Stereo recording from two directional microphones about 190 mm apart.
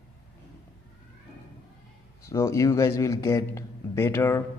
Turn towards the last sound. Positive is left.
turn(degrees=15)  # may be behind; listen again after turning